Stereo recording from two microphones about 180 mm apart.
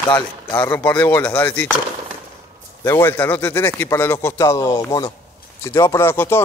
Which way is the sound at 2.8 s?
15° left (ahead or behind).